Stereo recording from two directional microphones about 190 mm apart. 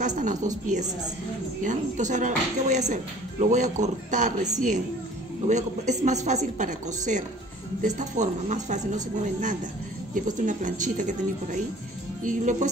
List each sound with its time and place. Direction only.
0.0 s speech: 40° right (ahead or behind)
1.6 s speech: 40° right (ahead or behind)
12.2 s music: 40° right (ahead or behind)